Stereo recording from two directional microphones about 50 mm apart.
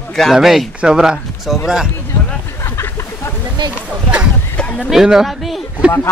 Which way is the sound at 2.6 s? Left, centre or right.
Left.